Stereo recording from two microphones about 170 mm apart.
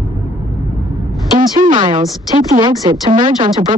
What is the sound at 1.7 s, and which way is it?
A woman's voice, 30° right (ahead or behind).